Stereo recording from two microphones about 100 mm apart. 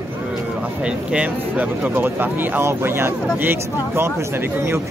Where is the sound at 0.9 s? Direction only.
15° right (ahead or behind).